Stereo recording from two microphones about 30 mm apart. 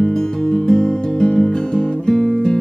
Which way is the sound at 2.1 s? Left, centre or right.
Centre.